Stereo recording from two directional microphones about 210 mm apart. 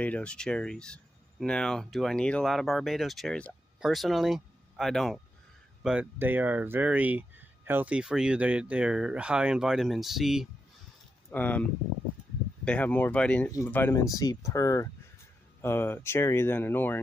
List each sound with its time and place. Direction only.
0.0 s speech: 5° left (ahead or behind)
12.6 s speech: 5° left (ahead or behind)